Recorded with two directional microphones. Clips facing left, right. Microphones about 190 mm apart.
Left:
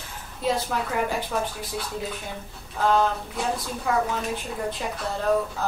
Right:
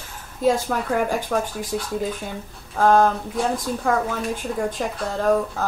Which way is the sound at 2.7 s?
50° right (ahead or behind).